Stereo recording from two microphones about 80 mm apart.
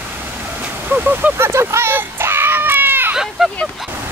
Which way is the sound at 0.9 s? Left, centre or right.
Right.